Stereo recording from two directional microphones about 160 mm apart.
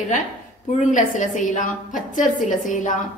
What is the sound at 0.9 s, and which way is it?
A woman's voice, 50° left (ahead or behind).